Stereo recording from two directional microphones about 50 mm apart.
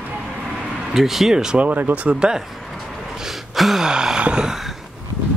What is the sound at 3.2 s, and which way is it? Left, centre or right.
Gasp, centre.